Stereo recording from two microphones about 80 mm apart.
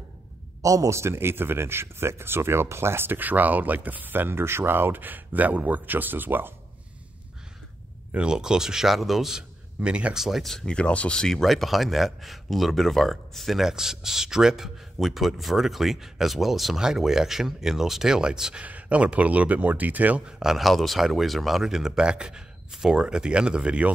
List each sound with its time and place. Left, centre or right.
0.6 s speech: right
8.1 s a man's voice: centre
9.8 s speech: centre